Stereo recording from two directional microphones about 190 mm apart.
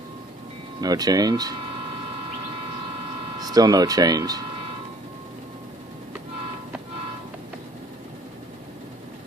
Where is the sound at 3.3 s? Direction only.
20° right (ahead or behind).